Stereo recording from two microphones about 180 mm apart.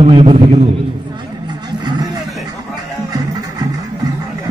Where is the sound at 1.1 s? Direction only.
25° right (ahead or behind).